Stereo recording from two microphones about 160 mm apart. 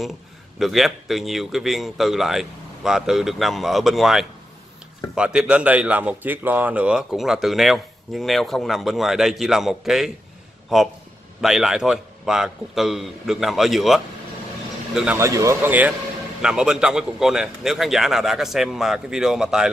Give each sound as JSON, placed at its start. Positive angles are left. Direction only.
{"t": 0.6, "sound": "speech", "side_deg": 0}
{"t": 15.1, "sound": "speech", "side_deg": -20}